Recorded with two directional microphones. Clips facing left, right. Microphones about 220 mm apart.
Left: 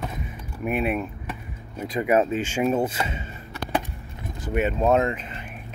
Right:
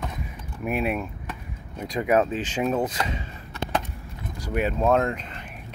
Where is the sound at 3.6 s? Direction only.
25° right (ahead or behind).